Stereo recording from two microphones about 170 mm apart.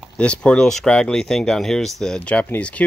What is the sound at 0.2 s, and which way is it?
Speech, 5° left (ahead or behind).